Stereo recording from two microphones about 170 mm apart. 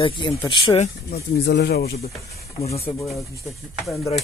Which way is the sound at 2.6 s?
35° left (ahead or behind).